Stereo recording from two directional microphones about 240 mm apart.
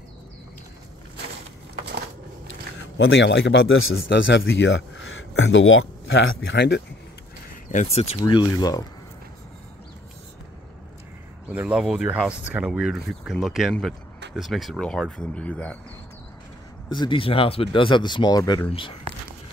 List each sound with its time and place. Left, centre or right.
3.0 s a man's voice: left
4.1 s speech: left
7.7 s speech: left
11.4 s speech: centre
16.9 s speech: centre